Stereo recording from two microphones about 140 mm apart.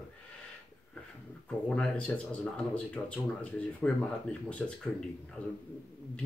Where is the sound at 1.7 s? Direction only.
10° left (ahead or behind).